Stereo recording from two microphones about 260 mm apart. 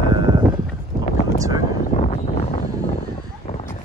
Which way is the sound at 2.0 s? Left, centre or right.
Left.